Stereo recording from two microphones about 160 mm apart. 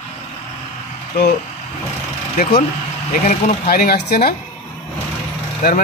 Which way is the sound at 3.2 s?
60° left (ahead or behind).